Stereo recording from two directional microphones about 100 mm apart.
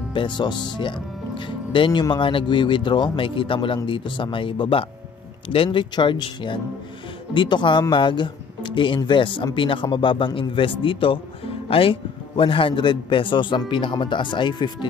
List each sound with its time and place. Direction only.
0.1 s speech: 50° left (ahead or behind)